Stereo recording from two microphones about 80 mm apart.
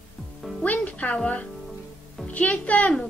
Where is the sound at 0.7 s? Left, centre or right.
Centre.